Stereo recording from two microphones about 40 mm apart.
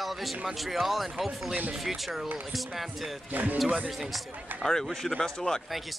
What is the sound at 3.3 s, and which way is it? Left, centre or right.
Speech, right.